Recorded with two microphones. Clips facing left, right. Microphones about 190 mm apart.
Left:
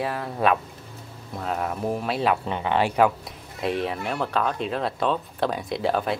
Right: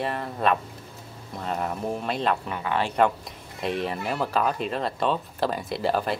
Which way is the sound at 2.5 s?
25° left (ahead or behind).